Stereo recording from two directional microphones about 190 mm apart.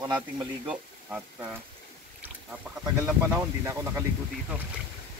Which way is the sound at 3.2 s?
15° right (ahead or behind).